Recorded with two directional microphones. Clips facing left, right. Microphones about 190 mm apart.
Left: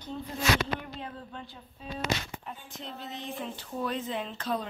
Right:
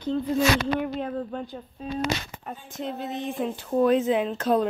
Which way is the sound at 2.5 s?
50° right (ahead or behind).